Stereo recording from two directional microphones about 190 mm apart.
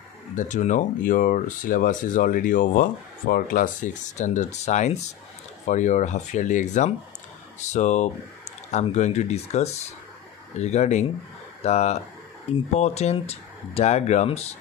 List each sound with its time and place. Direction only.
0.4 s speech: 40° left (ahead or behind)